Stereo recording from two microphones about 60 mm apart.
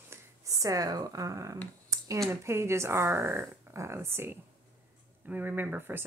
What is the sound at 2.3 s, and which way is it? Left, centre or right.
Speech, right.